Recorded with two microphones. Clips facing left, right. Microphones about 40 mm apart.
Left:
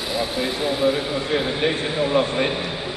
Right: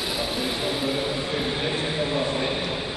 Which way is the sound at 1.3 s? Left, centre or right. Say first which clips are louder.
Left 5 dB; left.